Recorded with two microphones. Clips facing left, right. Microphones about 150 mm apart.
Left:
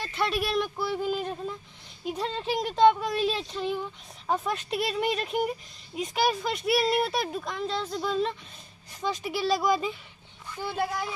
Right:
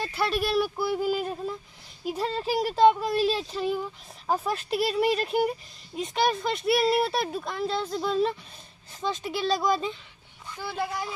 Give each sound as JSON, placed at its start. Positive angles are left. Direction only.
{"t": 0.0, "sound": "speech", "side_deg": -5}
{"t": 10.6, "sound": "speech", "side_deg": 15}